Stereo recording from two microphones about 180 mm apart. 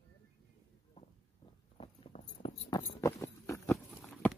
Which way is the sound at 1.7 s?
35° left (ahead or behind).